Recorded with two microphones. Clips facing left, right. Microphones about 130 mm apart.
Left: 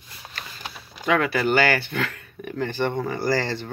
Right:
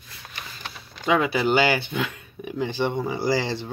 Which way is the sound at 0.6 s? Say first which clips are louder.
Even; 5° left (ahead or behind).